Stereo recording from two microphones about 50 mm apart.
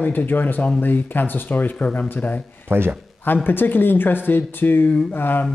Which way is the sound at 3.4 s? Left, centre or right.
Left.